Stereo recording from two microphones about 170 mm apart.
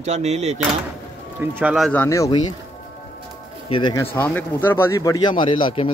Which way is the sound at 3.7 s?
25° left (ahead or behind).